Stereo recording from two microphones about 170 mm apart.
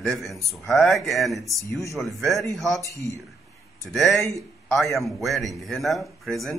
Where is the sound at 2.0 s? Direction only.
Centre (ahead or behind).